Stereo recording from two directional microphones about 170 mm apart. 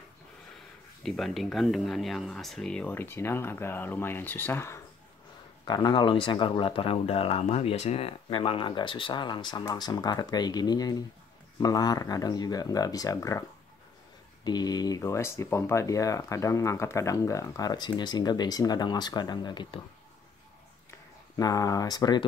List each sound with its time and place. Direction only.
1.0 s speech: centre (ahead or behind)
5.7 s speech: 25° left (ahead or behind)
21.4 s speech: 20° left (ahead or behind)